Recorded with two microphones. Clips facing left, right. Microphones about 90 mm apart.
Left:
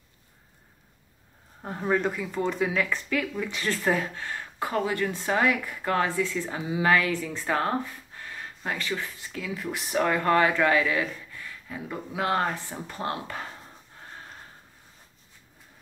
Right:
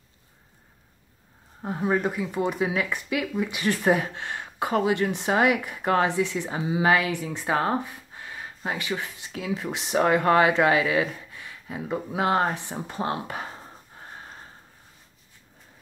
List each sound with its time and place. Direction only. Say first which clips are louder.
1.6 s speech: right 1 dB; 10° right (ahead or behind)